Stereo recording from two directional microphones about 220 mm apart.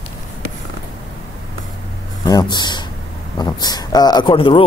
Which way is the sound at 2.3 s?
20° left (ahead or behind).